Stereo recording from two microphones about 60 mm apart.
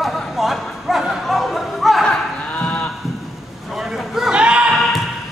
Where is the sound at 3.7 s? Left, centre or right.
Centre.